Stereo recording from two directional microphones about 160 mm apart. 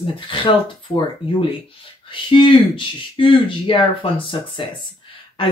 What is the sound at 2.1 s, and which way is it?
Speech, 30° left (ahead or behind).